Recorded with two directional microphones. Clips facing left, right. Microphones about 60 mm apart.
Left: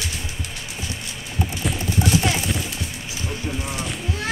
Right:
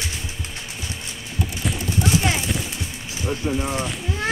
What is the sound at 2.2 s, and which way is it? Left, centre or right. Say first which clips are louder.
Clip-clop: even; centre.